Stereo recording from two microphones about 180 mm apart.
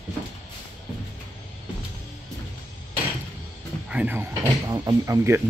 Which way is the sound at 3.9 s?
10° right (ahead or behind).